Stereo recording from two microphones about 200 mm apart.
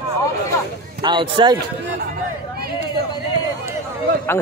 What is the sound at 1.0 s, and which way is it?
Speech, 25° right (ahead or behind).